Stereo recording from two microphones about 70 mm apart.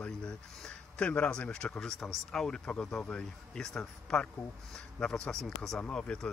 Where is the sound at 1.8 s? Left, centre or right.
Centre.